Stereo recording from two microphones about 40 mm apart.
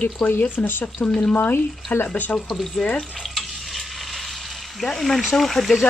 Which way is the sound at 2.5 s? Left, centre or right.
Left.